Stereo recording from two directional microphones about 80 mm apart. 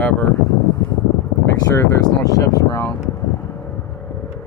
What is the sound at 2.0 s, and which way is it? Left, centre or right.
Speech, left.